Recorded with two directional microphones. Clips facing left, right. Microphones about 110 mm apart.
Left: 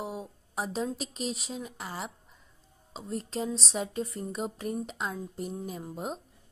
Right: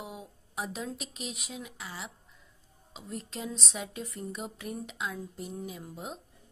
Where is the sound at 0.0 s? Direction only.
35° left (ahead or behind).